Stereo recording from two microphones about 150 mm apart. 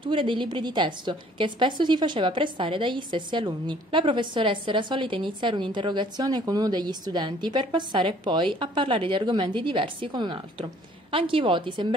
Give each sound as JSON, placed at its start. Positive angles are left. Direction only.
{"t": 0.0, "sound": "a woman's voice", "side_deg": -35}